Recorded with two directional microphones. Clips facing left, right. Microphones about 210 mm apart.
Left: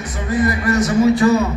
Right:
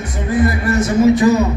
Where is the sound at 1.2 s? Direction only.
20° right (ahead or behind).